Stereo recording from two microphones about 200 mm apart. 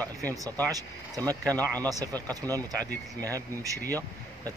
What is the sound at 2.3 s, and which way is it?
Speech, 20° right (ahead or behind).